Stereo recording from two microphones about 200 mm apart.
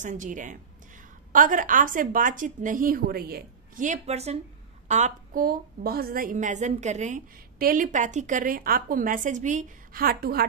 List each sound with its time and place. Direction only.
0.0 s a woman's voice: 40° right (ahead or behind)